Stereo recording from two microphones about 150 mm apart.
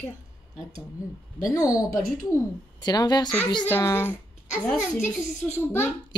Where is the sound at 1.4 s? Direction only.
25° left (ahead or behind).